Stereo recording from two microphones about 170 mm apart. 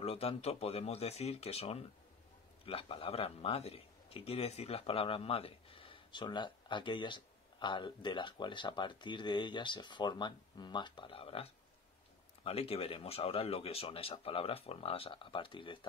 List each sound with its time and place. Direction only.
0.0 s speech: 35° left (ahead or behind)